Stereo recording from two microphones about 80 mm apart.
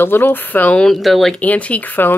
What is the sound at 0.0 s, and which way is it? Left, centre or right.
Speech, left.